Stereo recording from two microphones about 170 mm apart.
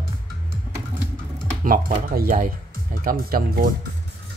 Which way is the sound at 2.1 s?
55° right (ahead or behind).